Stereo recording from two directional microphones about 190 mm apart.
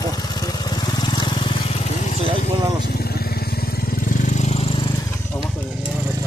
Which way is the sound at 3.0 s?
55° left (ahead or behind).